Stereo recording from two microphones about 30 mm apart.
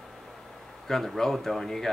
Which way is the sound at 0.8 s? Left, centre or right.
Centre.